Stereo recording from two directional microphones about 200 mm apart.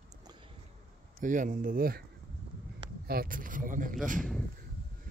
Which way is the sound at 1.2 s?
40° right (ahead or behind).